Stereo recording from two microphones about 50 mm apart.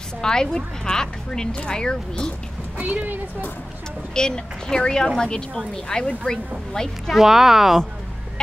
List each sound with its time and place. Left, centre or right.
0.2 s speech: centre
2.8 s a woman's voice: right
4.1 s speech: centre
7.1 s speech: centre